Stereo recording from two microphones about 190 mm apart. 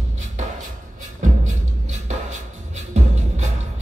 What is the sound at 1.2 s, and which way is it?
Music, 40° right (ahead or behind).